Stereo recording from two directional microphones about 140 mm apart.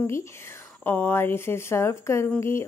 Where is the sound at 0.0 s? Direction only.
20° left (ahead or behind).